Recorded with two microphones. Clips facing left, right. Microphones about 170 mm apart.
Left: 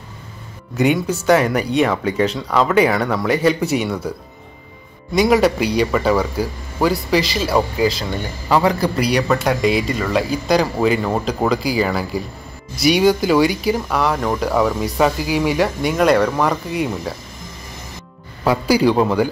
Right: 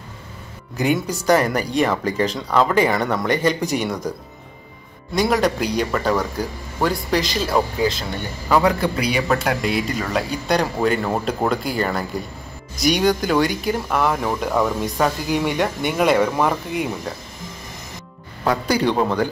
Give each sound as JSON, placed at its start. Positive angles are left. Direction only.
{"t": 0.7, "sound": "speech", "side_deg": 0}
{"t": 5.1, "sound": "speech", "side_deg": 10}
{"t": 18.4, "sound": "a man's voice", "side_deg": 5}